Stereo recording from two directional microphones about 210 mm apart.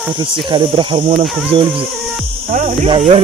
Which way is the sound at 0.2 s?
20° right (ahead or behind).